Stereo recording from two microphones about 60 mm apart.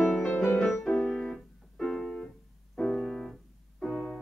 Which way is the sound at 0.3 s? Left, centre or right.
Left.